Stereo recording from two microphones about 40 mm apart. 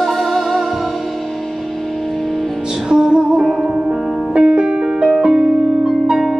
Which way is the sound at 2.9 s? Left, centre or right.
Centre.